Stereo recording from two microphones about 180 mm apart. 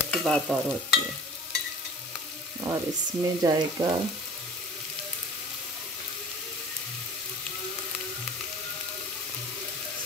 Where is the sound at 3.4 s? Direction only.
20° right (ahead or behind).